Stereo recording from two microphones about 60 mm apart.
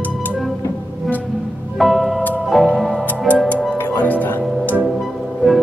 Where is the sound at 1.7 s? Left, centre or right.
Centre.